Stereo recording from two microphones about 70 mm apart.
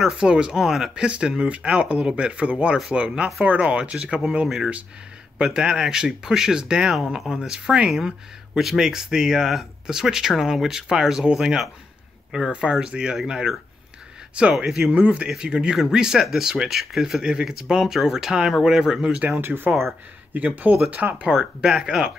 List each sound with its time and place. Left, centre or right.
0.0 s speech: centre
1.0 s speech: centre
5.4 s speech: centre
14.9 s speech: centre
15.2 s speech: centre
19.2 s speech: right
19.7 s speech: centre
20.3 s speech: right
21.3 s speech: centre